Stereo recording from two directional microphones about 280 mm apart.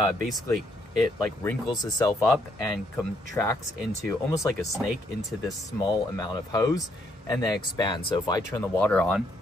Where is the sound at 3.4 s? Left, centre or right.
Centre.